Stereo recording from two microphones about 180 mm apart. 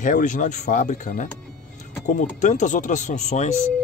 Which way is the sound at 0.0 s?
45° left (ahead or behind).